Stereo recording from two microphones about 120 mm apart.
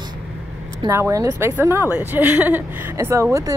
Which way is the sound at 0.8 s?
25° right (ahead or behind).